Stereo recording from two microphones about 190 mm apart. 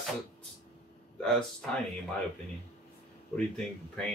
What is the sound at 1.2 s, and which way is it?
Speech, 5° left (ahead or behind).